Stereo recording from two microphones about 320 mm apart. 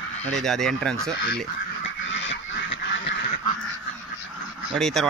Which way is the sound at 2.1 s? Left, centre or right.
Left.